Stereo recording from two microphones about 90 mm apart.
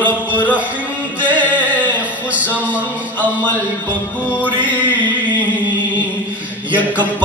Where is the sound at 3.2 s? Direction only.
20° left (ahead or behind).